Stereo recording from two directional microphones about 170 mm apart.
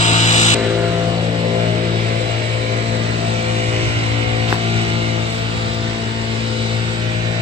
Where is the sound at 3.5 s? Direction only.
35° right (ahead or behind).